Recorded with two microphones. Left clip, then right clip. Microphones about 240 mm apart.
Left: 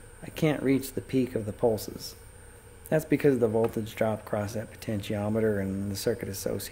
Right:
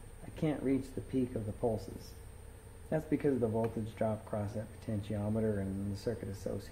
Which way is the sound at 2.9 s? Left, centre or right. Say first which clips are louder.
Left 9 dB; left.